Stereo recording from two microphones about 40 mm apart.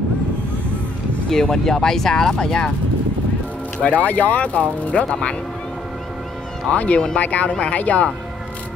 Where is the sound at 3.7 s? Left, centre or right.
Left.